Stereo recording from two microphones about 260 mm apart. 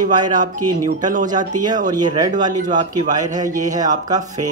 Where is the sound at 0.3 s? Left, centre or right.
Right.